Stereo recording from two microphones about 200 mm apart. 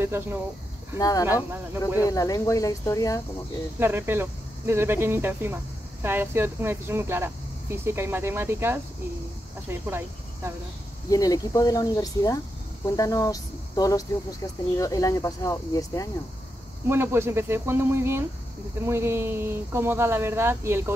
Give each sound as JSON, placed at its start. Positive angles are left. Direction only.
{"t": 0.0, "sound": "speech", "side_deg": -10}
{"t": 0.9, "sound": "speech", "side_deg": 15}
{"t": 3.8, "sound": "speech", "side_deg": -10}
{"t": 11.1, "sound": "speech", "side_deg": 20}
{"t": 16.9, "sound": "speech", "side_deg": -10}